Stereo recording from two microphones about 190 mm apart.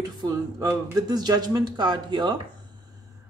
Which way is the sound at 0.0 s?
20° right (ahead or behind).